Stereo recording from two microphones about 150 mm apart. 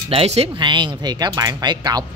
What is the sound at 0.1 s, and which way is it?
Speech, 40° right (ahead or behind).